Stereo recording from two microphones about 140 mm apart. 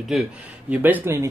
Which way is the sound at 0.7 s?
15° right (ahead or behind).